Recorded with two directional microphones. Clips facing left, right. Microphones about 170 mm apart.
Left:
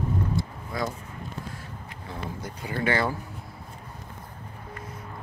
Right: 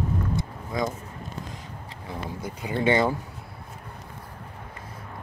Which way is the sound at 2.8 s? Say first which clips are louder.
Right 4 dB; 20° right (ahead or behind).